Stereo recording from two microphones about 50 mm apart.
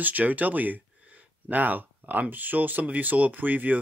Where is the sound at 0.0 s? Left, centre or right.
Right.